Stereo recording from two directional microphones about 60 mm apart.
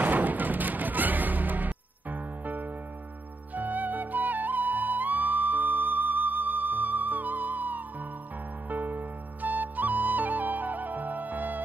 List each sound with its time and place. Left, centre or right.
0.0 s music: right
8.6 s flute: right